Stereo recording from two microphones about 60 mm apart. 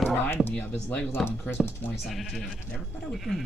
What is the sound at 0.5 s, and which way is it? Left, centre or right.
Speech, left.